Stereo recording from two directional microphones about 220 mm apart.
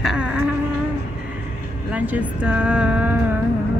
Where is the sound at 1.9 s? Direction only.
5° right (ahead or behind).